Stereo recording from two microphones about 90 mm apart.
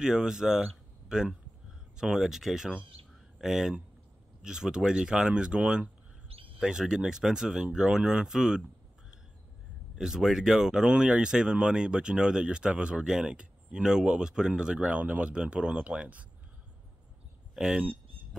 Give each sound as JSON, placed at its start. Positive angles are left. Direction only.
{"t": 0.0, "sound": "speech", "side_deg": -5}
{"t": 6.2, "sound": "a sound", "side_deg": -85}
{"t": 6.6, "sound": "speech", "side_deg": -5}
{"t": 9.9, "sound": "speech", "side_deg": -5}
{"t": 17.6, "sound": "speech", "side_deg": -10}